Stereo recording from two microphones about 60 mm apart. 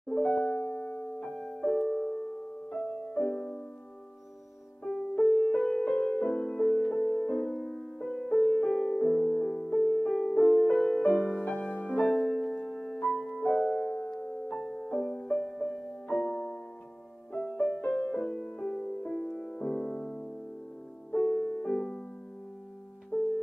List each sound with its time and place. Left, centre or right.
0.1 s music: centre
1.3 s music: centre
4.8 s music: centre
8.5 s music: centre
12.6 s music: centre
21.1 s music: centre
23.1 s music: centre